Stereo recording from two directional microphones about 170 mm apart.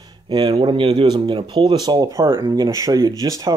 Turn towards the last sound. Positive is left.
turn(degrees=-20)  # may be behind; listen again after turning